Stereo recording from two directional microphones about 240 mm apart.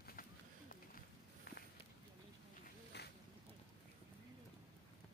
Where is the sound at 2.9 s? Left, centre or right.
Left.